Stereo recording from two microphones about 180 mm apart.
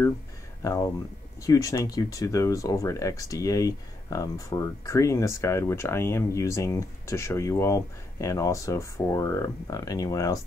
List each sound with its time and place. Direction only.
0.6 s speech: 20° left (ahead or behind)